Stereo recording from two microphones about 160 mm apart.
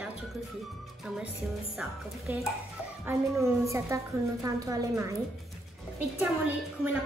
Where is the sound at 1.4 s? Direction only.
10° right (ahead or behind).